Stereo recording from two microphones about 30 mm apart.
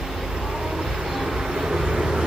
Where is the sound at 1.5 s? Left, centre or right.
Centre.